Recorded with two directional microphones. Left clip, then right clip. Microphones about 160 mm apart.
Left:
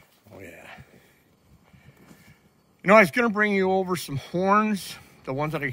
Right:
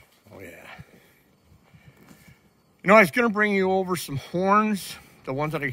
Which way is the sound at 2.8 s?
15° right (ahead or behind).